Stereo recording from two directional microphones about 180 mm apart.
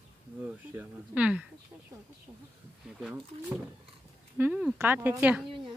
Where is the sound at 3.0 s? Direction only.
10° right (ahead or behind).